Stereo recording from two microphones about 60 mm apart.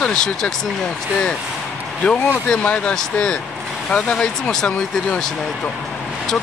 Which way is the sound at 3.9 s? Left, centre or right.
Centre.